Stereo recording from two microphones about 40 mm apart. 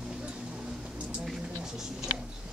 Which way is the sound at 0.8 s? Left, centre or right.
Right.